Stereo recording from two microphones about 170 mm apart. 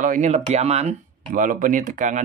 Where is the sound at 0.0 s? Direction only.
50° right (ahead or behind).